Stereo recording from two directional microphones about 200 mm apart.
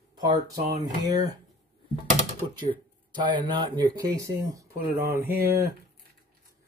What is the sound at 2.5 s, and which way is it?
Speech, 25° right (ahead or behind).